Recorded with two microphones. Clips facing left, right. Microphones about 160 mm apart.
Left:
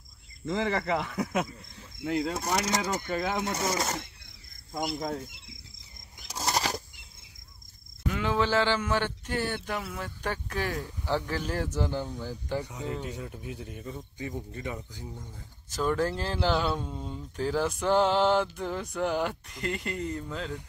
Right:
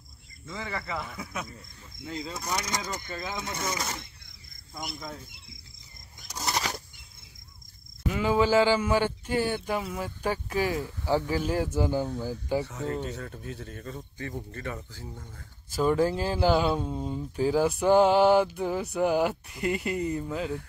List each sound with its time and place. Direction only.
0.5 s speech: 80° left
2.0 s speech: 65° left (ahead or behind)
3.5 s speech: 40° left (ahead or behind)
6.2 s a sound: 35° left (ahead or behind)
8.1 s speech: 5° right (ahead or behind)
12.6 s speech: 15° left (ahead or behind)
15.7 s speech: 10° right (ahead or behind)